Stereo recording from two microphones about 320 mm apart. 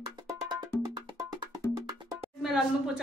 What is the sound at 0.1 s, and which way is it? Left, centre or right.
Music, centre.